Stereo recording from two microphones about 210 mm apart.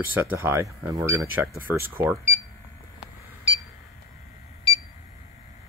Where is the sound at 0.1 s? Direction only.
10° right (ahead or behind).